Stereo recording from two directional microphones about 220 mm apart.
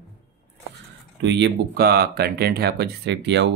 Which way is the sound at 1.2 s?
50° right (ahead or behind).